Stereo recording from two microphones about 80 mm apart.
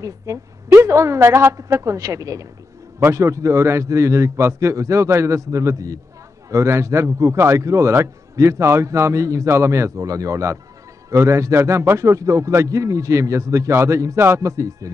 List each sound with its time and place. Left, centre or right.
0.3 s a man's voice: right